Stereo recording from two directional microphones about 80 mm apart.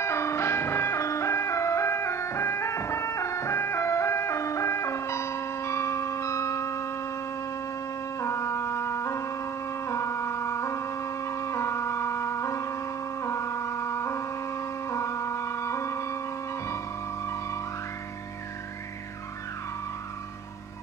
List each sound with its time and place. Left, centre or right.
0.0 s ice cream truck: left
8.2 s music: left